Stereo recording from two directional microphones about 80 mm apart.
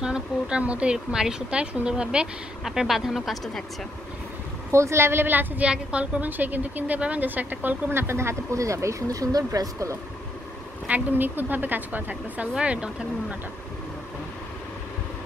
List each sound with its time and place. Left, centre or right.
0.0 s a woman's voice: centre
4.6 s a woman's voice: right
10.9 s a woman's voice: right